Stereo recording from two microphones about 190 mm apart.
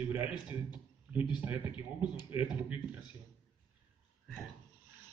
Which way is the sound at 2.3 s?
10° right (ahead or behind).